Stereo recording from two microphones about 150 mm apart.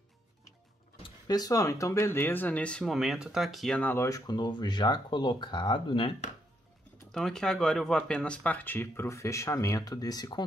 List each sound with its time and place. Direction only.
1.0 s speech: 25° left (ahead or behind); by 2.8 s 10° left (ahead or behind)
2.8 s speech: centre (ahead or behind); by 6.1 s 35° left (ahead or behind)
7.1 s speech: 5° left (ahead or behind); by 10.4 s 25° left (ahead or behind)